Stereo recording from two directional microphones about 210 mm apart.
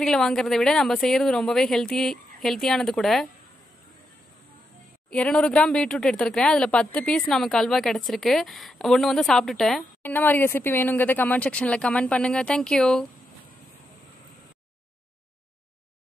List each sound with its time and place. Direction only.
0.0 s speech: centre (ahead or behind)
5.1 s speech: 5° left (ahead or behind)